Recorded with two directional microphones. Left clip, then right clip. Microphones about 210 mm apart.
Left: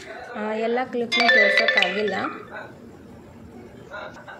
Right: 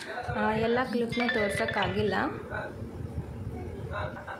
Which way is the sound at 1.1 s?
40° left (ahead or behind).